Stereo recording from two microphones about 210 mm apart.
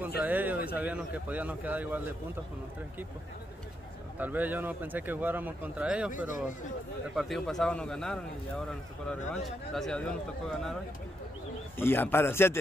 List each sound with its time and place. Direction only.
0.2 s speech: 10° right (ahead or behind)
4.2 s speech: 10° right (ahead or behind)
6.1 s speech: 40° left (ahead or behind)
7.2 s a man's voice: centre (ahead or behind)
11.8 s a man's voice: 10° left (ahead or behind)